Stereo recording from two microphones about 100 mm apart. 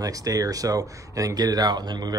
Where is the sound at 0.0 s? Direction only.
35° right (ahead or behind).